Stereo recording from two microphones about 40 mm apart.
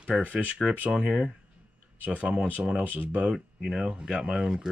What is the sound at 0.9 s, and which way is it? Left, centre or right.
Speech, right.